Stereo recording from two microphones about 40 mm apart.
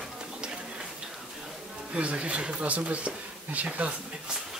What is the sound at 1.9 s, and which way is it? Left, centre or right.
Speech, right.